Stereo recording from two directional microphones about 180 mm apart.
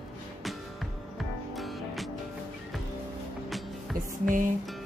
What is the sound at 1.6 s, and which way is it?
Music, centre (ahead or behind).